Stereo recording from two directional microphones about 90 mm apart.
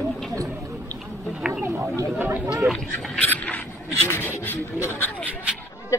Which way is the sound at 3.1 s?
15° left (ahead or behind).